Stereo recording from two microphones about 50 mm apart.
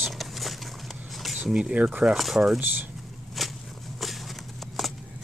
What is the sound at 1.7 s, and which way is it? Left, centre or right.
Speech, right.